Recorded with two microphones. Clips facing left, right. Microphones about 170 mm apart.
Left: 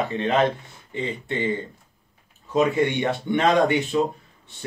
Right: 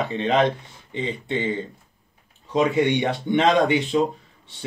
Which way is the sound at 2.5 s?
20° right (ahead or behind).